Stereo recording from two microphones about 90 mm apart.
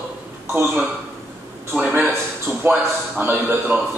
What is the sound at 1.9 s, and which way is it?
A man's voice, 25° right (ahead or behind).